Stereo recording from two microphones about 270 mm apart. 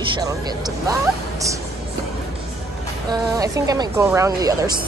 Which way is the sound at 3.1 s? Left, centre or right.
Centre.